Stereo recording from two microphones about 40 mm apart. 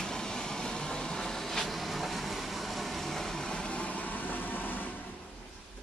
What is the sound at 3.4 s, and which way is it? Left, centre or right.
Vehicle, left.